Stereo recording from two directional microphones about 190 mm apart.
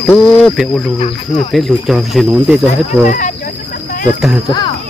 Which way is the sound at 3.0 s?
40° left (ahead or behind).